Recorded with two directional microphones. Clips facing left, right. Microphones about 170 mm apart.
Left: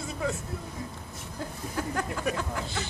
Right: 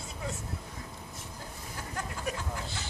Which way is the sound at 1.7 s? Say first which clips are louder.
Left 8 dB; 75° left (ahead or behind).